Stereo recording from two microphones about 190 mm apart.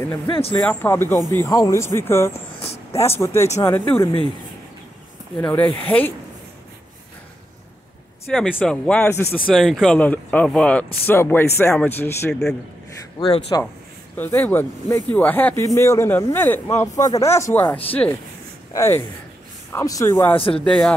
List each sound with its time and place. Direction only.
0.3 s speech: 30° left (ahead or behind)
0.6 s speech: 10° left (ahead or behind)
5.5 s speech: 10° left (ahead or behind)
8.3 s speech: 5° left (ahead or behind)
9.5 s speech: centre (ahead or behind)
13.5 s a man's voice: 20° left (ahead or behind)
14.1 s speech: 10° left (ahead or behind)
20.3 s a man's voice: 30° left (ahead or behind)
20.6 s speech: 5° left (ahead or behind)